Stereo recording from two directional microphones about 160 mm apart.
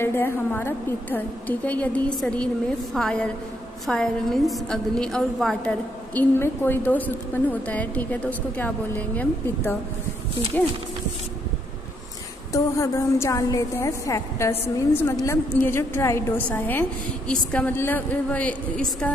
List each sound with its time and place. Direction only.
0.0 s a woman's voice: 15° left (ahead or behind)
12.5 s a woman's voice: 20° left (ahead or behind)